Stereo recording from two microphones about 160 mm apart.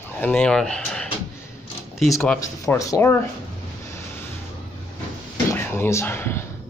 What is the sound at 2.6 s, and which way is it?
Speech, 20° left (ahead or behind).